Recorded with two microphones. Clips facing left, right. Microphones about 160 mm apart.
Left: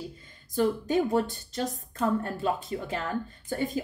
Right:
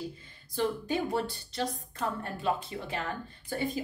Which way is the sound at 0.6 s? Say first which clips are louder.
Left 5 dB; 45° left (ahead or behind).